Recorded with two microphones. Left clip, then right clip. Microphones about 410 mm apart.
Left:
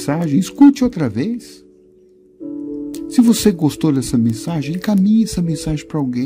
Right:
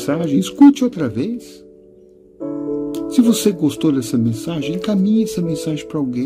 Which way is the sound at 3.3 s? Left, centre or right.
Centre.